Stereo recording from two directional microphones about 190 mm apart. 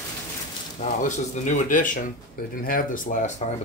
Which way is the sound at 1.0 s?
40° left (ahead or behind).